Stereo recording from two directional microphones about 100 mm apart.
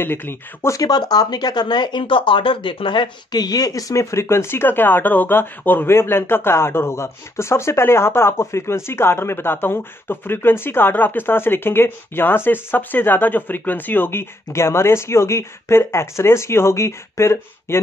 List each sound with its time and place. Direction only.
0.0 s speech: 20° left (ahead or behind)
0.7 s speech: 40° left (ahead or behind)